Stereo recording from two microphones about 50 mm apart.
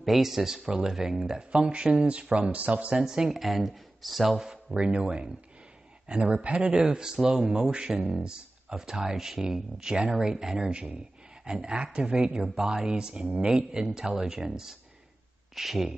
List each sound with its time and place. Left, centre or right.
0.0 s speech: centre
0.7 s speech: centre
0.9 s speech: centre; by 2.9 s right
2.9 s speech: centre
4.7 s speech: centre
12.4 s speech: centre